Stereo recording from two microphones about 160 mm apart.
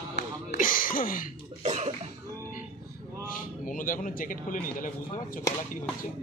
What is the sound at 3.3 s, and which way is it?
Speech, 55° left (ahead or behind).